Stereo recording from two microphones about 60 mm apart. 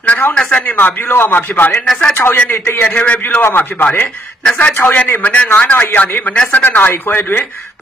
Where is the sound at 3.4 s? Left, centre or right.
Left.